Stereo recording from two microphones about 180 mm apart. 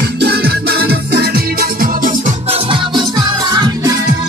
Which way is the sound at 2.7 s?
25° right (ahead or behind).